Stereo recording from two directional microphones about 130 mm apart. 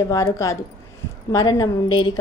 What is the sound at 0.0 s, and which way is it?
Speech, 25° left (ahead or behind).